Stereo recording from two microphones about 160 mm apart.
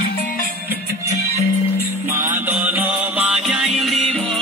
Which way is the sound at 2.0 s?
15° right (ahead or behind).